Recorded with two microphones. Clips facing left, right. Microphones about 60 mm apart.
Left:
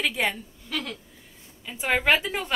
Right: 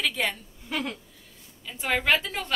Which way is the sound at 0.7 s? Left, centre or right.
Centre.